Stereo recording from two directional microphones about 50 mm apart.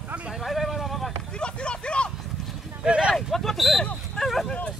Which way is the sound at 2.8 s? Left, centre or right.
Centre.